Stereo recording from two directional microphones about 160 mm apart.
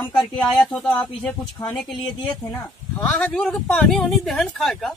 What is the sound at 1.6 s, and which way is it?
Speech, 20° left (ahead or behind).